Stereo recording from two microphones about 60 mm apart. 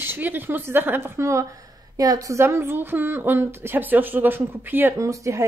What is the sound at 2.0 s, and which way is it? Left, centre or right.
Speech, right.